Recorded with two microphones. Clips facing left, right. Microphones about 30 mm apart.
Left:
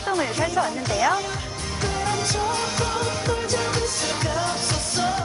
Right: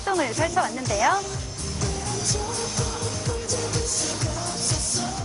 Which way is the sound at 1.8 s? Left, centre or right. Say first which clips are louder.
Left 5 dB; left.